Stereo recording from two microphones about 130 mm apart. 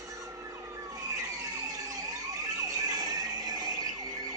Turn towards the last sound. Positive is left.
turn(degrees=-30)  # may be behind; listen again after turning